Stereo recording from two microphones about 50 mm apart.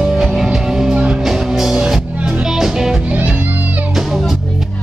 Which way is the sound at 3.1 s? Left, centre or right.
Right.